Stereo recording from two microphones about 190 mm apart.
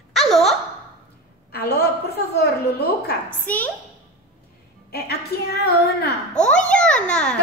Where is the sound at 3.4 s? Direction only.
10° left (ahead or behind).